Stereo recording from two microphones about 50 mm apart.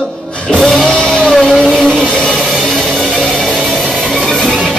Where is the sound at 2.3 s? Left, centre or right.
Centre.